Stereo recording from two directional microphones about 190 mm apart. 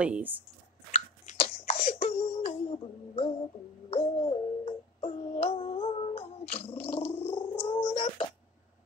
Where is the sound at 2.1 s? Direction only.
30° left (ahead or behind).